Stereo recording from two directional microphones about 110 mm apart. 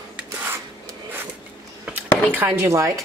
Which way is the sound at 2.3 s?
20° right (ahead or behind).